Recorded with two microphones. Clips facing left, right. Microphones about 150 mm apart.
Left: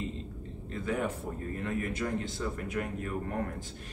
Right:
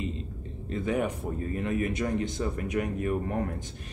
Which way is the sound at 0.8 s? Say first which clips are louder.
Right 3 dB; 15° right (ahead or behind).